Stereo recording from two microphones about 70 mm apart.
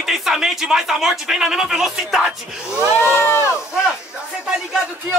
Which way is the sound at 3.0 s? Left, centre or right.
Left.